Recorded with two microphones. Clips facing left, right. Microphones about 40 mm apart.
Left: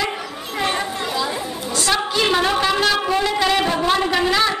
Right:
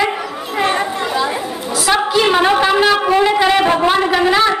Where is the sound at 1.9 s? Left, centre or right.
Centre.